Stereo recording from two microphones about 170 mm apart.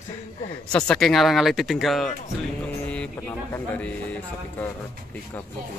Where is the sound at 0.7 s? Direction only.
5° left (ahead or behind).